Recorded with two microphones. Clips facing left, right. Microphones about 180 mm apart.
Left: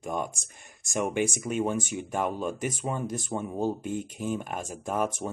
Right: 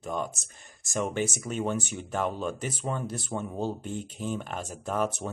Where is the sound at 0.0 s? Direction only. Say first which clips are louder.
Left 1 dB; 10° left (ahead or behind).